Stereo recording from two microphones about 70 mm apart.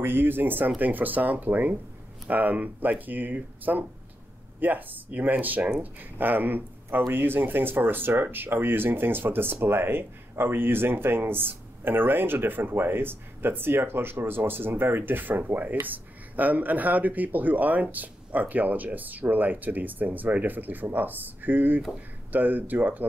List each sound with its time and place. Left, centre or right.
0.0 s speech: right